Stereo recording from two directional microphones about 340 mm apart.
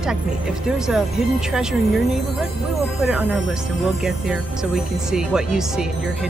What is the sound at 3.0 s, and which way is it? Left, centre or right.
Speech, centre.